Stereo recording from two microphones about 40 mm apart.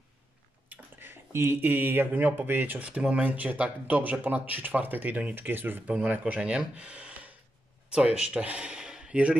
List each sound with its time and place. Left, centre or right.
0.7 s speech: right
3.3 s speech: right
5.3 s speech: right
5.9 s speech: right
7.9 s speech: right
9.1 s speech: right